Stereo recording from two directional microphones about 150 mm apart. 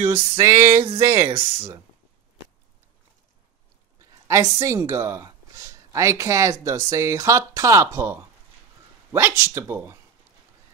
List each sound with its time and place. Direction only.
0.0 s a woman's voice: 20° right (ahead or behind)
1.2 s speech: 40° right (ahead or behind)
4.3 s a woman's voice: 20° right (ahead or behind)